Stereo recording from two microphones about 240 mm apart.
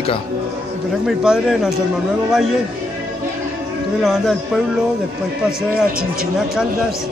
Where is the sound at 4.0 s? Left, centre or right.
Centre.